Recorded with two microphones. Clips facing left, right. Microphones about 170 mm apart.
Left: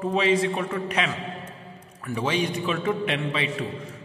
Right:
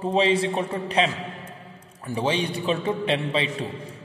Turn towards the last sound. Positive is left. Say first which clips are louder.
# right 2 dB
turn(degrees=-30)  # may be behind; listen again after turning